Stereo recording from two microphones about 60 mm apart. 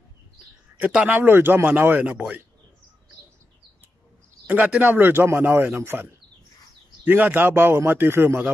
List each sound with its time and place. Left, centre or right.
0.7 s speech: right
1.1 s a man's voice: right
4.7 s a man's voice: right